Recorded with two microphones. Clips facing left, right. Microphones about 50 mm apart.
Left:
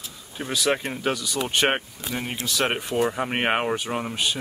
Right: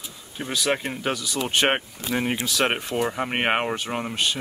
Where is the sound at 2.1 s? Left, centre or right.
Centre.